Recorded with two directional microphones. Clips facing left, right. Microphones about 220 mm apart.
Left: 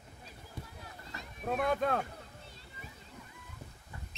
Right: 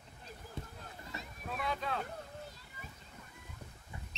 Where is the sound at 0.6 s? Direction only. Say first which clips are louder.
Right 1 dB; 25° right (ahead or behind).